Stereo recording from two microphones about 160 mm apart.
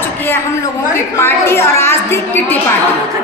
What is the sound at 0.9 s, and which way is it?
A woman's voice, 15° left (ahead or behind).